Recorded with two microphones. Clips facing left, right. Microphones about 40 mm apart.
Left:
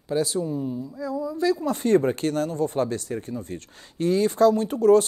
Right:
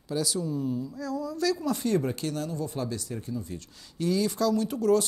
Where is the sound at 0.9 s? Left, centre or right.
Left.